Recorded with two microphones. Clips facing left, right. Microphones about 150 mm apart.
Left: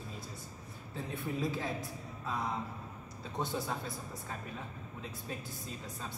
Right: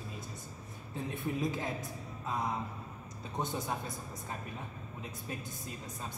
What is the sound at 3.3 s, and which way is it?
Speech, 20° right (ahead or behind).